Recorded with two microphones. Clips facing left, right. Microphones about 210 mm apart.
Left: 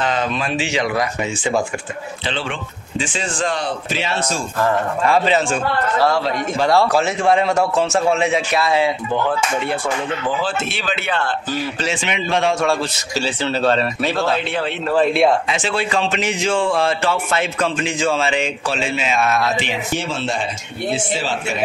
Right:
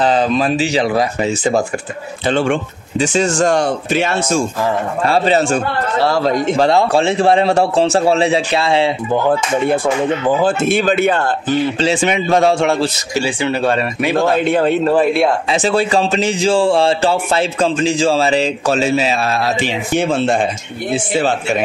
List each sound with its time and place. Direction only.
0.0 s speech: 35° right (ahead or behind)
5.0 s speech: 35° right (ahead or behind)
6.7 s speech: 25° right (ahead or behind)
9.1 s speech: 45° right (ahead or behind)
11.4 s a man's voice: 30° right (ahead or behind)
12.0 s speech: 40° right (ahead or behind)
12.5 s a man's voice: 20° right (ahead or behind)
14.4 s speech: 45° right (ahead or behind)
20.0 s speech: 55° right (ahead or behind)